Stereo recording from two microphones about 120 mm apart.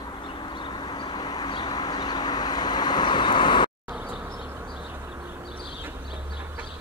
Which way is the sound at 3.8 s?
15° right (ahead or behind).